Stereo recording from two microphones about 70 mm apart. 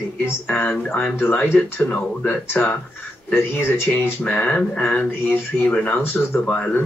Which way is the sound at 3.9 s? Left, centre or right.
Centre.